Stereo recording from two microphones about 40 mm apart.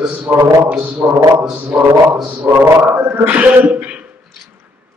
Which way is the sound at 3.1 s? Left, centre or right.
Right.